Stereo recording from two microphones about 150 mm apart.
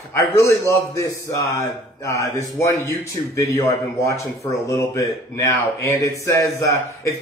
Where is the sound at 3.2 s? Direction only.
30° left (ahead or behind).